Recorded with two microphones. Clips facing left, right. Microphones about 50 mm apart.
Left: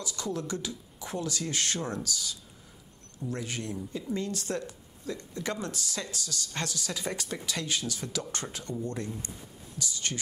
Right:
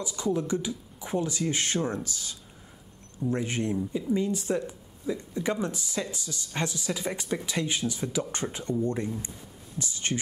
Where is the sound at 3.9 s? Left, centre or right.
Centre.